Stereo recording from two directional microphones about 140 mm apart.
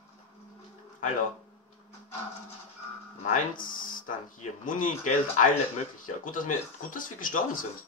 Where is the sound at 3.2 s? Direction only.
70° left (ahead or behind).